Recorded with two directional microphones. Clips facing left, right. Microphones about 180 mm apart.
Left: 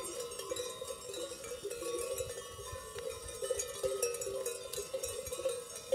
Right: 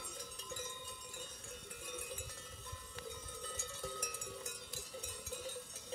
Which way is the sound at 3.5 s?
55° left (ahead or behind).